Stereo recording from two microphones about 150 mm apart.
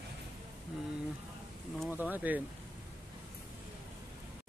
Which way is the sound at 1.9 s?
10° right (ahead or behind).